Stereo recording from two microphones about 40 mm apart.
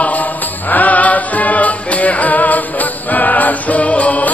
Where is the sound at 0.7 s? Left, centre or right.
Left.